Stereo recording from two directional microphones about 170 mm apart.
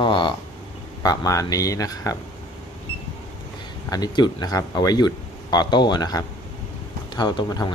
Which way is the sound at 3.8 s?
20° left (ahead or behind).